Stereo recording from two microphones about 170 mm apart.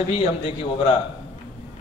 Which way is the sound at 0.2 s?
35° left (ahead or behind).